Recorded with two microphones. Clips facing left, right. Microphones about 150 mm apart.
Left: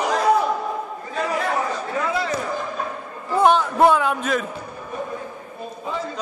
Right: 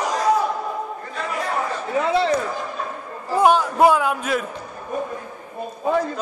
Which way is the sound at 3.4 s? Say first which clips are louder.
Even; 10° right (ahead or behind).